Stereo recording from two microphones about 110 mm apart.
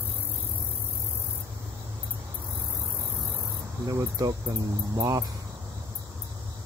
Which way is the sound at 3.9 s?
30° right (ahead or behind).